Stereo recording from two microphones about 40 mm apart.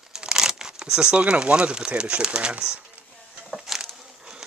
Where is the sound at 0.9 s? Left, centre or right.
Right.